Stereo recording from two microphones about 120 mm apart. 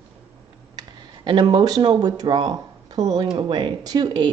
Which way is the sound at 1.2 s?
40° right (ahead or behind).